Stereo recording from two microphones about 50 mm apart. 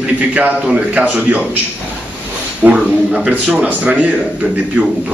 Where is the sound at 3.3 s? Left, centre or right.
Right.